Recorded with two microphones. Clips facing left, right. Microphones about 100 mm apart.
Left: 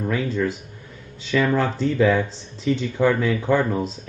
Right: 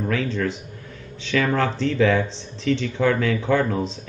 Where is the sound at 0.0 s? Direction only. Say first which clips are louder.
Left 1 dB; 5° left (ahead or behind).